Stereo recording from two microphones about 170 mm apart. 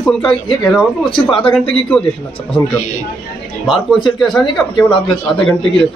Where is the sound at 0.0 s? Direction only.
5° left (ahead or behind).